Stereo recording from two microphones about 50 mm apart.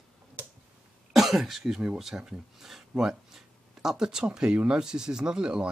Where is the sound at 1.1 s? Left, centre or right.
Centre.